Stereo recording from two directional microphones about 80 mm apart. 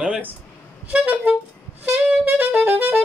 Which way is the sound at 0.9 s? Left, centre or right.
Centre.